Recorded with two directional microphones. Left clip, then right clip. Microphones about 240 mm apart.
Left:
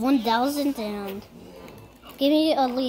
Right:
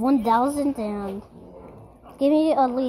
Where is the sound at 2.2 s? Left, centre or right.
Centre.